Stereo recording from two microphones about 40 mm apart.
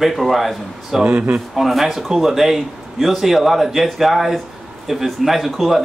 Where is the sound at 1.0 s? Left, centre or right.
Right.